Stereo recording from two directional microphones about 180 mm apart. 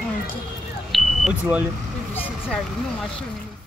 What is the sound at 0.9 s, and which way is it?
Vehicle, centre (ahead or behind).